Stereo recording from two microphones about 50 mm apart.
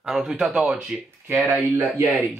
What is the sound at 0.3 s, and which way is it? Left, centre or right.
Speech, centre.